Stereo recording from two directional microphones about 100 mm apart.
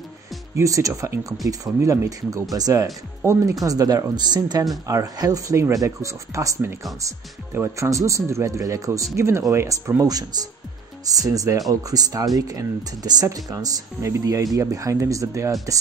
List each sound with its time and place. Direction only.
0.6 s speech: 35° right (ahead or behind)